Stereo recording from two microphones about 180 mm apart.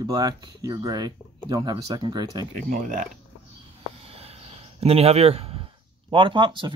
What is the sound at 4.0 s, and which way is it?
Speech, 35° right (ahead or behind).